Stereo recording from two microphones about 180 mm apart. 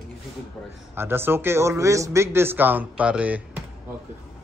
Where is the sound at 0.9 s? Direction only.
15° right (ahead or behind).